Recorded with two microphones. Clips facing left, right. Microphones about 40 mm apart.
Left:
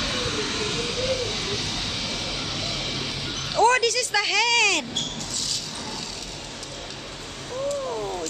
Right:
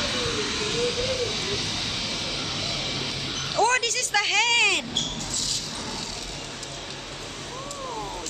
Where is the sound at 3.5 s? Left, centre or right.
Left.